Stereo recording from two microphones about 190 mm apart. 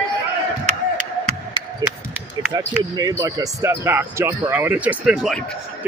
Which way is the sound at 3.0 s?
20° right (ahead or behind).